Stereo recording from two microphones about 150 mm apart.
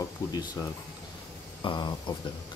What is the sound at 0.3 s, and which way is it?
Speech, 25° left (ahead or behind).